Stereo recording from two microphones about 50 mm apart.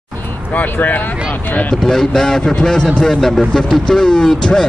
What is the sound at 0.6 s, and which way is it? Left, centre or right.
Speech, left.